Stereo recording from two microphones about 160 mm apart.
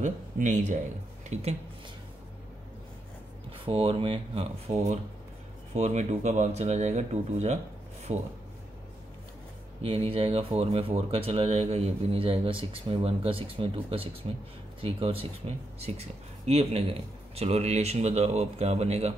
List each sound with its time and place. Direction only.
0.0 s speech: 50° right (ahead or behind)
3.6 s speech: 35° right (ahead or behind)
5.8 s speech: 45° right (ahead or behind)
9.8 s speech: 35° right (ahead or behind)